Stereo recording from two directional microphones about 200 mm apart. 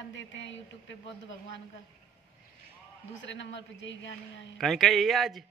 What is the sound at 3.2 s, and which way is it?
Speech, 65° left (ahead or behind).